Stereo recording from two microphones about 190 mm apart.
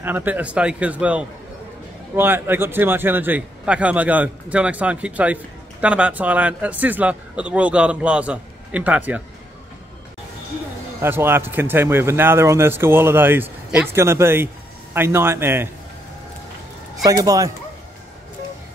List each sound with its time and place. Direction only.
0.0 s a man's voice: 10° right (ahead or behind)
11.0 s a man's voice: 10° right (ahead or behind)
17.0 s a man's voice: 20° right (ahead or behind)